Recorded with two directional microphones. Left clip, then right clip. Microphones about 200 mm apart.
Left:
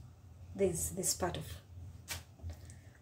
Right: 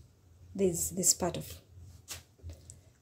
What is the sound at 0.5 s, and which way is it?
Speech, 40° right (ahead or behind).